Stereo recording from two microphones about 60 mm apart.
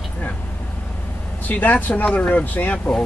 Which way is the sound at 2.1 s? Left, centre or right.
Centre.